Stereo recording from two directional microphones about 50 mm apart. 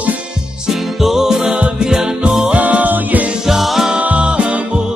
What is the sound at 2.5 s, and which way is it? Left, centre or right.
Music, right.